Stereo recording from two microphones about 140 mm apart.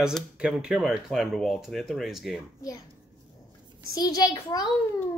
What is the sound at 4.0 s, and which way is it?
Speech, 25° left (ahead or behind).